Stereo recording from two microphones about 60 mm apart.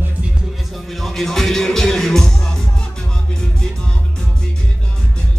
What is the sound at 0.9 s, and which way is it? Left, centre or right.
Music, centre.